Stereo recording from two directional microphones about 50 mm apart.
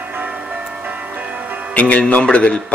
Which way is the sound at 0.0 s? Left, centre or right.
Right.